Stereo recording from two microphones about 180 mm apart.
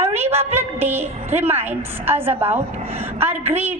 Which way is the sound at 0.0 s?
15° right (ahead or behind).